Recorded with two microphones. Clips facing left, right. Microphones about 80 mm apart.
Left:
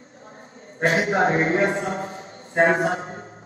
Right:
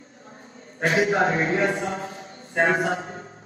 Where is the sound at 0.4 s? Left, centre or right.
Left.